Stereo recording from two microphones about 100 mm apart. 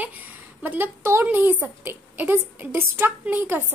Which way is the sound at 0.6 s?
20° right (ahead or behind).